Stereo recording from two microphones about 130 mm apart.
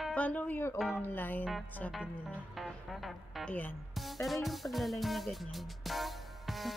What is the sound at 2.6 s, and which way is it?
Music, centre (ahead or behind).